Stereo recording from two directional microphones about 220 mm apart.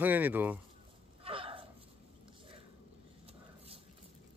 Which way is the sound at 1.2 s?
25° right (ahead or behind).